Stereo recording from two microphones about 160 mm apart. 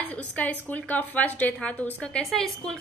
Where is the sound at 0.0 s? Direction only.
10° left (ahead or behind).